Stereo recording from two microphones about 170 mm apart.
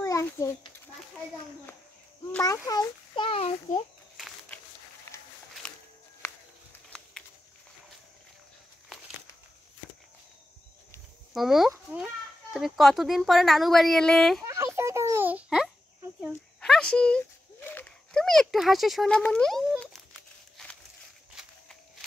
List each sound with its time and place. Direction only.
0.0 s a sound: 15° left (ahead or behind)
2.4 s a child's voice: 20° left (ahead or behind)
5.6 s walk: 5° left (ahead or behind)
6.2 s walk: 15° left (ahead or behind)
11.3 s speech: centre (ahead or behind)
14.4 s a sound: 15° right (ahead or behind); by 19.6 s 5° left (ahead or behind)
21.4 s walk: 5° right (ahead or behind)